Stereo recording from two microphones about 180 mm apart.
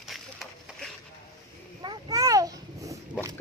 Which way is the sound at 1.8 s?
25° right (ahead or behind).